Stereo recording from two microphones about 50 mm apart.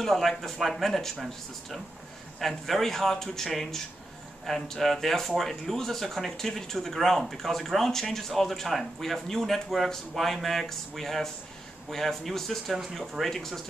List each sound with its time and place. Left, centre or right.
0.0 s speech: centre